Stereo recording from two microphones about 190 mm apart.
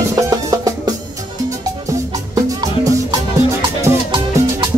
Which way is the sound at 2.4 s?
20° right (ahead or behind).